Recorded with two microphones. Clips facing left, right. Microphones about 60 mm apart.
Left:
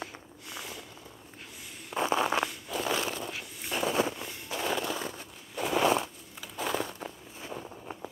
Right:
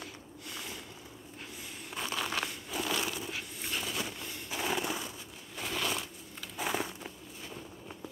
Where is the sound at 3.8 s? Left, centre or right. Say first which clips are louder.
Left 13 dB; left.